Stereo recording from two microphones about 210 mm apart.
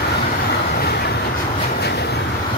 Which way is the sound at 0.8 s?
50° left (ahead or behind).